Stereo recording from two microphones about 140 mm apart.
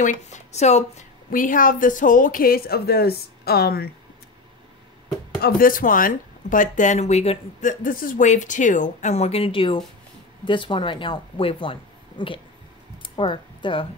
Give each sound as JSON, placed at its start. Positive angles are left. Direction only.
{"t": 0.0, "sound": "a woman's voice", "side_deg": 60}
{"t": 5.6, "sound": "speech", "side_deg": 80}
{"t": 13.0, "sound": "a sound", "side_deg": 35}